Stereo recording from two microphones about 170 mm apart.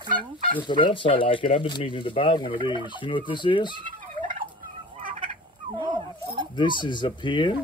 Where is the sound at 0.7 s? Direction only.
30° left (ahead or behind).